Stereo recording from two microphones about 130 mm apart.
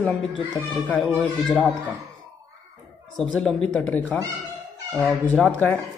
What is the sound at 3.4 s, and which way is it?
Speech, 5° left (ahead or behind).